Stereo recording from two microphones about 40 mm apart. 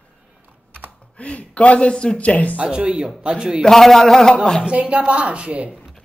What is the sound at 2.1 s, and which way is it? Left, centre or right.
Speech, left.